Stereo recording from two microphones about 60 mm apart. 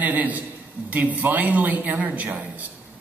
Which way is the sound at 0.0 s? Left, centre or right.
Right.